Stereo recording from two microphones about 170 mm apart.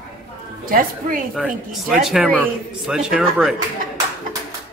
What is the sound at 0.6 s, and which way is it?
Speech, 55° right (ahead or behind).